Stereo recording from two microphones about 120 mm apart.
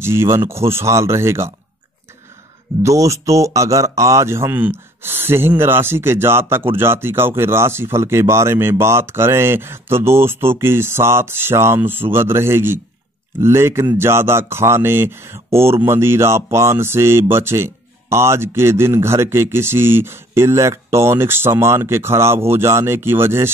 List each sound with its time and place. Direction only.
0.0 s a man's voice: 20° right (ahead or behind)
2.8 s a man's voice: 25° right (ahead or behind)